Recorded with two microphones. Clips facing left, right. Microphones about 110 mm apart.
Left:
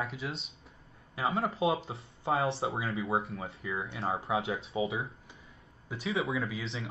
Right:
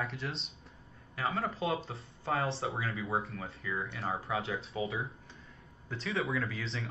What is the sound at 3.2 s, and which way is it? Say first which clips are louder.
Speech: left 2 dB; 30° left (ahead or behind).